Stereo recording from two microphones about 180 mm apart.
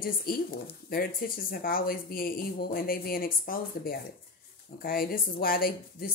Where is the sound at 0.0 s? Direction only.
55° left (ahead or behind).